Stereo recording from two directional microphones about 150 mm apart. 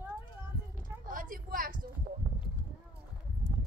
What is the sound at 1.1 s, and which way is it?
Speech, 65° right (ahead or behind).